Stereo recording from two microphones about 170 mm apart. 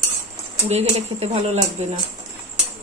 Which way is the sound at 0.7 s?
40° right (ahead or behind).